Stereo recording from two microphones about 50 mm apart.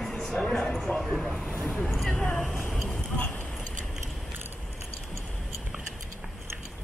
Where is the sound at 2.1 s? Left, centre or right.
Centre.